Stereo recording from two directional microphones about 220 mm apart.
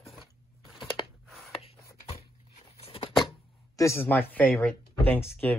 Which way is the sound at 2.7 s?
25° left (ahead or behind).